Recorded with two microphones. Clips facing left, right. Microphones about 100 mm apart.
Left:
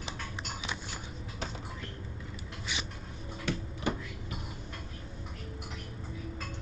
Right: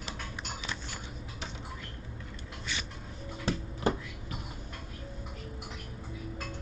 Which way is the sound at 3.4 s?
35° right (ahead or behind).